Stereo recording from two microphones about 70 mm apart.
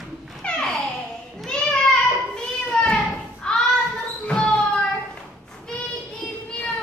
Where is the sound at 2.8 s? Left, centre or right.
Centre.